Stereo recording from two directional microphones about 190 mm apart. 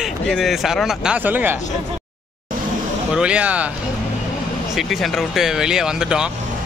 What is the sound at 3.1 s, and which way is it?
Speech, 5° right (ahead or behind).